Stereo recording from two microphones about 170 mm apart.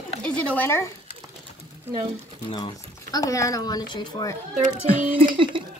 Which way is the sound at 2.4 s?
30° left (ahead or behind).